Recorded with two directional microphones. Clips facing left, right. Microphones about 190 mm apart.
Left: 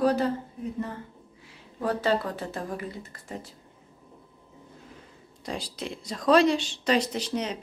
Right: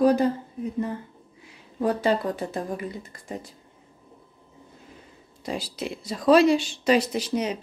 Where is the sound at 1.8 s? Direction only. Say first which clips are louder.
Right 3 dB; 15° right (ahead or behind).